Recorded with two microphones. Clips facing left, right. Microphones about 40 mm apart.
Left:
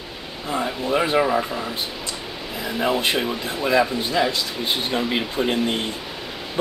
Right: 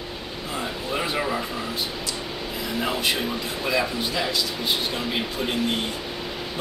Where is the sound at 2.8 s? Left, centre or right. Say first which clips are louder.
Left 4 dB; left.